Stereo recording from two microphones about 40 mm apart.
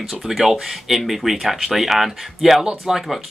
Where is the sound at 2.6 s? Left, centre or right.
Centre.